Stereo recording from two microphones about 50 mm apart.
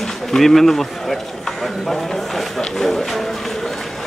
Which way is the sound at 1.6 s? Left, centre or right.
Centre.